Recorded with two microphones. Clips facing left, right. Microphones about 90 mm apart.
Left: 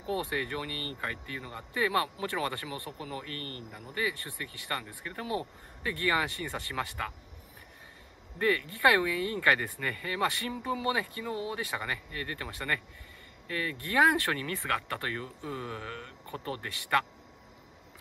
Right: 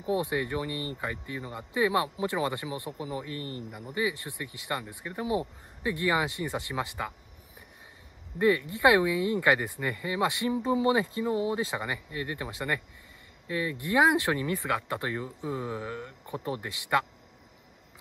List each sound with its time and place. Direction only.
0.0 s speech: 20° right (ahead or behind)
8.4 s speech: 20° right (ahead or behind)